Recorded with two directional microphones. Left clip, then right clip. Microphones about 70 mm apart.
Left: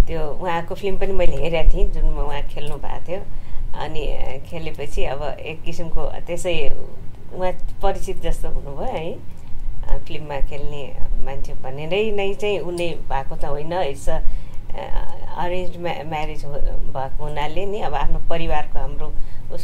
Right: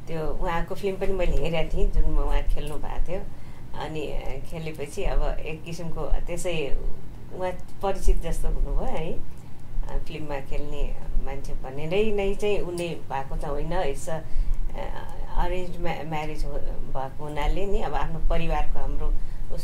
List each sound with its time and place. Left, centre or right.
0.1 s speech: centre